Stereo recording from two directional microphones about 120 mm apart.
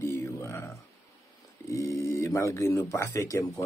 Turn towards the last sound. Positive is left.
turn(degrees=25)  # may be behind; listen again after turning